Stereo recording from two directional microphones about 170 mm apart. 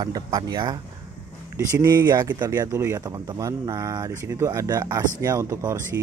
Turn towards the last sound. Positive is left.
turn(degrees=-20)  # may be behind; listen again after turning